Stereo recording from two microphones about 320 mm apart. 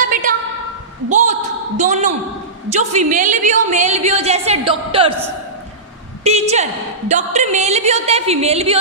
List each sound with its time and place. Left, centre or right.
0.1 s a sound: right
1.8 s a woman's voice: right
6.2 s a woman's voice: centre